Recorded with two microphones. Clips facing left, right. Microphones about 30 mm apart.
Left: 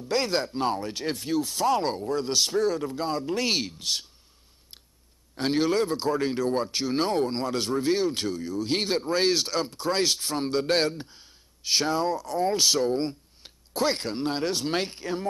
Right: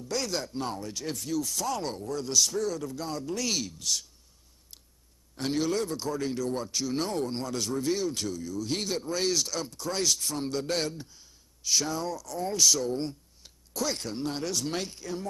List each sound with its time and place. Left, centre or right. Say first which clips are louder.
0.0 s a man's voice: left 6 dB; left
5.3 s a man's voice: left 4 dB; left